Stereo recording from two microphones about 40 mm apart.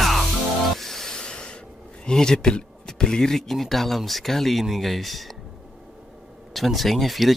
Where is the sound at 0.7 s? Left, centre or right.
Centre; by 1.6 s left.